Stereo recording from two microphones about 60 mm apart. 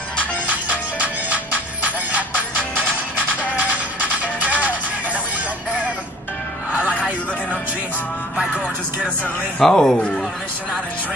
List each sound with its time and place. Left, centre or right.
0.5 s music: right
8.4 s music: centre
9.6 s speech: centre